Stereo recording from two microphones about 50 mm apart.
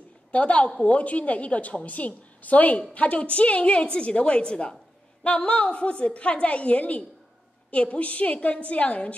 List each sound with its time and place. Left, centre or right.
0.3 s a woman's voice: left